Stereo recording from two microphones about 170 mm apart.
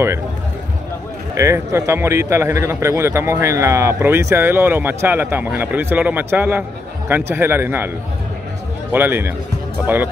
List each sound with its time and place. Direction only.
1.3 s a man's voice: 15° right (ahead or behind)
8.9 s a man's voice: 10° right (ahead or behind)